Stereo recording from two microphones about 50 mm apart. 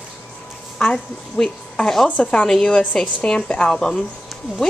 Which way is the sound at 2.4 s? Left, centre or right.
Centre.